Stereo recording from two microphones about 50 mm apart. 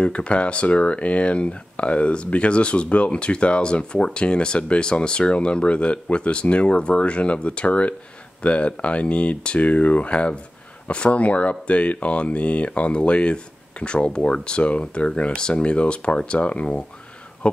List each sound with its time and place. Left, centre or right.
0.0 s speech: left